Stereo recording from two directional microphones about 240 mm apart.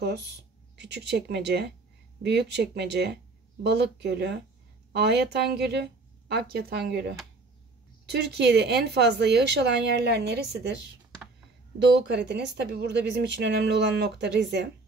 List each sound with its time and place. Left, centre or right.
0.7 s speech: right
11.9 s speech: right